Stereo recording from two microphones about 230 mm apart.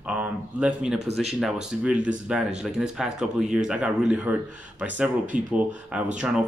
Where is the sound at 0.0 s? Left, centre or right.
Centre.